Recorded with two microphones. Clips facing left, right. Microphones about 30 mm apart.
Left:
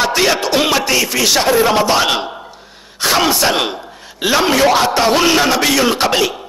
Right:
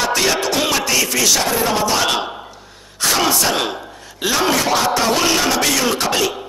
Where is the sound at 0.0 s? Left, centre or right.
Left.